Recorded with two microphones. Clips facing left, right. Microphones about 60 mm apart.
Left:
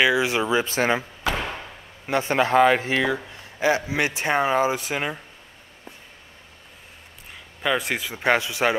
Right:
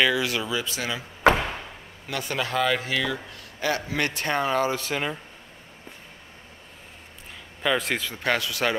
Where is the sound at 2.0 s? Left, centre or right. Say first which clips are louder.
Left 8 dB; left.